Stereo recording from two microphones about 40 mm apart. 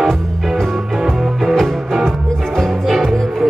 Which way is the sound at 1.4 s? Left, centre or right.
Centre.